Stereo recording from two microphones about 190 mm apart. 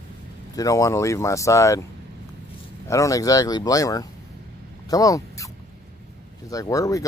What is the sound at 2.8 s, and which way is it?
Speech, 15° left (ahead or behind).